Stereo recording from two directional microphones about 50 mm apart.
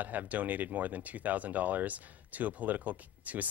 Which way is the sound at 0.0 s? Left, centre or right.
Right.